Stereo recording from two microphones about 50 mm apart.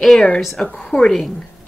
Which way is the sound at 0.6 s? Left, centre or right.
Centre.